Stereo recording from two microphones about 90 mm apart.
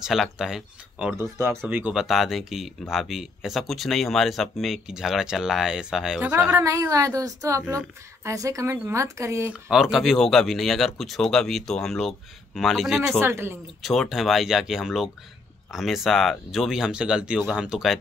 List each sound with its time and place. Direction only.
0.0 s speech: 5° right (ahead or behind)
1.1 s speech: 30° right (ahead or behind)
2.0 s speech: centre (ahead or behind)
6.5 s a woman's voice: 35° right (ahead or behind)
9.5 s speech: 5° right (ahead or behind)
13.2 s speech: 25° right (ahead or behind)
13.8 s speech: centre (ahead or behind)